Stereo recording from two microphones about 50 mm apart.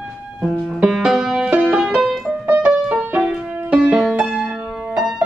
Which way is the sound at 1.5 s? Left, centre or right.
Right.